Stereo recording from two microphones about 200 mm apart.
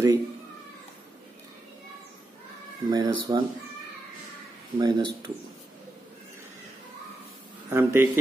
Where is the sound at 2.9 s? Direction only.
25° right (ahead or behind).